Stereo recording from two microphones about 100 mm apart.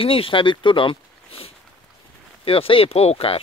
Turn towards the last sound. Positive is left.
turn(degrees=75)  # may be behind; listen again after turning